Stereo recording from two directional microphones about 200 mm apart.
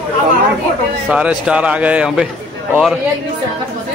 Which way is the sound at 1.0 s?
5° right (ahead or behind).